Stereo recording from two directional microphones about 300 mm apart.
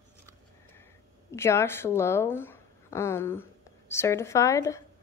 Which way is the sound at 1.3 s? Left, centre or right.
Centre.